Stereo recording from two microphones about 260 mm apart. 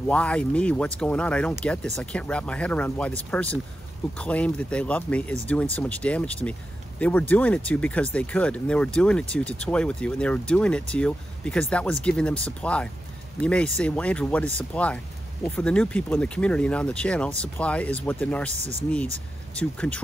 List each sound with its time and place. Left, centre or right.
0.0 s speech: centre
18.5 s speech: right
19.5 s speech: centre